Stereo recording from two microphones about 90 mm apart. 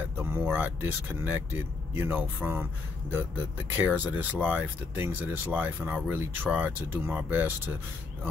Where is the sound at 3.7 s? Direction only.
20° right (ahead or behind).